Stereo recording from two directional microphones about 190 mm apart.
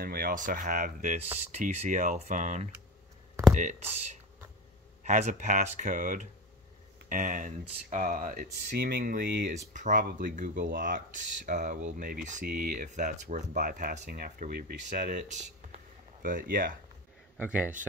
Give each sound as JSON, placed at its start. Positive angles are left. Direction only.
{"t": 0.0, "sound": "speech", "side_deg": -50}
{"t": 9.7, "sound": "speech", "side_deg": -40}
{"t": 17.4, "sound": "speech", "side_deg": -10}